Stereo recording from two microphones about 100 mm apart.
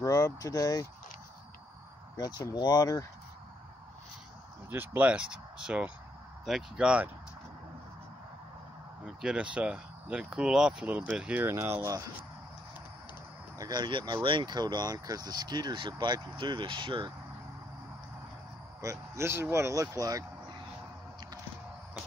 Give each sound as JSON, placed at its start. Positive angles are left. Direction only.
{"t": 0.0, "sound": "a sound", "side_deg": 30}
{"t": 2.1, "sound": "speech", "side_deg": 40}
{"t": 4.6, "sound": "speech", "side_deg": -15}
{"t": 9.2, "sound": "speech", "side_deg": -10}
{"t": 11.4, "sound": "speech", "side_deg": -25}
{"t": 13.6, "sound": "speech", "side_deg": -45}
{"t": 18.8, "sound": "speech", "side_deg": -30}